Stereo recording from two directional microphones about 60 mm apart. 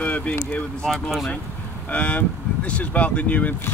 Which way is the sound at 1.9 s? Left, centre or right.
Left.